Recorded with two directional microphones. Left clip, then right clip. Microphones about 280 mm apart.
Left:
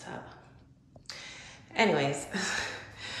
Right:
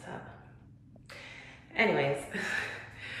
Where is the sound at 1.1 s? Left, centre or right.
Centre.